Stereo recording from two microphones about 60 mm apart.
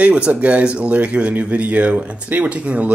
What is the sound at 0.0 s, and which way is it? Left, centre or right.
Speech, right.